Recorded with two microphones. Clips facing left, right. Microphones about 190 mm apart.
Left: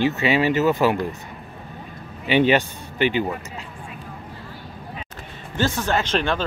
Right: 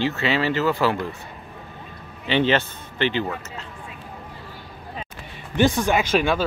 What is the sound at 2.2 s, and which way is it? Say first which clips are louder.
Speech: left 3 dB; 15° left (ahead or behind).